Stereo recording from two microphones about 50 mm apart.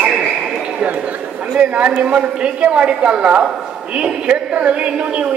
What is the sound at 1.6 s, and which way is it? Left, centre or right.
Speech, right.